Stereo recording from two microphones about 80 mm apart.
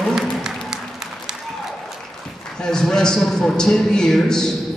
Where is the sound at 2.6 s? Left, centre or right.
Centre.